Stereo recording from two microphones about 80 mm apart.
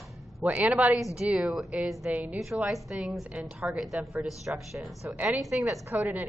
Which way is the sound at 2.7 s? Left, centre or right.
Centre.